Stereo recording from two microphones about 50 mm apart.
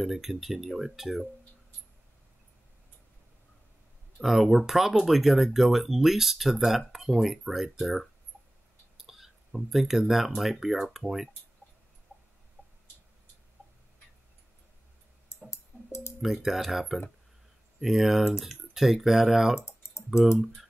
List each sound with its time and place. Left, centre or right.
0.0 s speech: centre
4.2 s speech: centre
15.5 s music: left
16.2 s speech: centre